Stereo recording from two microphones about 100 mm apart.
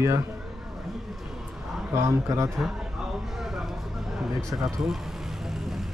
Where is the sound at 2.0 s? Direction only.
30° right (ahead or behind).